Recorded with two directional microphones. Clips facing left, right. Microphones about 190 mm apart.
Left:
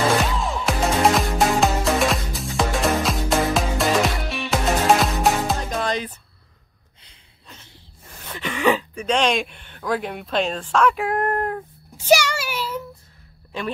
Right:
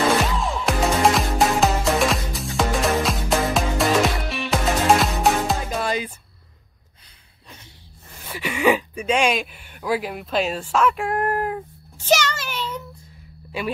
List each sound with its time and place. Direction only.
0.4 s music: centre (ahead or behind)
8.2 s speech: 10° right (ahead or behind)
12.0 s a sound: 10° left (ahead or behind)